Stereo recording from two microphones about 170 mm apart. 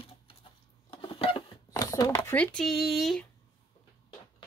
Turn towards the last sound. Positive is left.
turn(degrees=0)  # may be behind; listen again after turning